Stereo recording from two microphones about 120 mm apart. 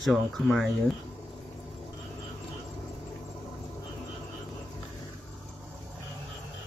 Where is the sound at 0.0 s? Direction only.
Centre (ahead or behind).